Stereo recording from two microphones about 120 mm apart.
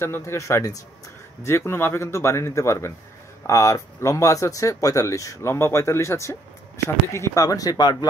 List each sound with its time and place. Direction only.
0.0 s a man's voice: 20° left (ahead or behind)